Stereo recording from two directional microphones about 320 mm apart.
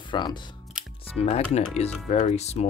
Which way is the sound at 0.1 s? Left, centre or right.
Centre.